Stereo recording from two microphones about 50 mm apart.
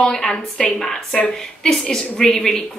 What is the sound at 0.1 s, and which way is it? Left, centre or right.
A woman's voice, centre.